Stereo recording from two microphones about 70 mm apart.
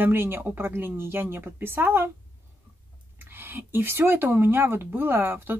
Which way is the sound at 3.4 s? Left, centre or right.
Right.